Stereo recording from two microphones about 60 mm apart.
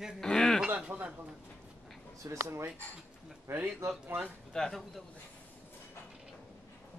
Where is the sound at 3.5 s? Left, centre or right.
Right.